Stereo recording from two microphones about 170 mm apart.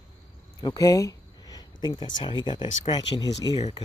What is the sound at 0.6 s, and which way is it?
Speech, 25° left (ahead or behind).